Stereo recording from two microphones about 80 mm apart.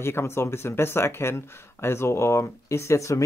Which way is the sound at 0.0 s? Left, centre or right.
Left.